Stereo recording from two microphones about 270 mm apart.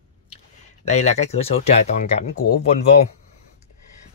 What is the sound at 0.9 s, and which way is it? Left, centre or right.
Speech, left.